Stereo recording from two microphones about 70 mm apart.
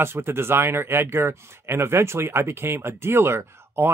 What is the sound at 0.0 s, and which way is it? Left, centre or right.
Speech, right.